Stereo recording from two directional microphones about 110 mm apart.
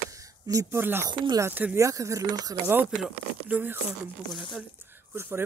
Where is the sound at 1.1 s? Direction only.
40° right (ahead or behind).